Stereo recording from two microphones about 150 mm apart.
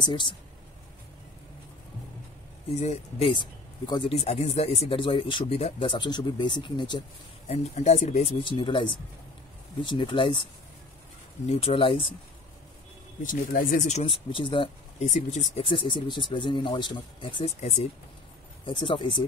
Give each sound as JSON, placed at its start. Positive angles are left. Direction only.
{"t": 0.0, "sound": "speech", "side_deg": 30}
{"t": 2.8, "sound": "speech", "side_deg": 40}
{"t": 4.1, "sound": "speech", "side_deg": 45}
{"t": 7.4, "sound": "speech", "side_deg": 50}
{"t": 11.4, "sound": "speech", "side_deg": 40}
{"t": 13.2, "sound": "speech", "side_deg": 60}
{"t": 14.3, "sound": "speech", "side_deg": 35}
{"t": 15.0, "sound": "speech", "side_deg": 50}
{"t": 15.6, "sound": "speech", "side_deg": 35}
{"t": 18.7, "sound": "speech", "side_deg": 35}